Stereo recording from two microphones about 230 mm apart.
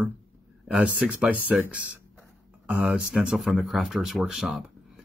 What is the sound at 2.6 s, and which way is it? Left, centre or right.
Speech, centre.